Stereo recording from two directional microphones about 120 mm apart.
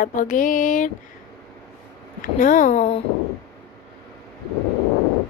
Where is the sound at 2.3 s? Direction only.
90° left.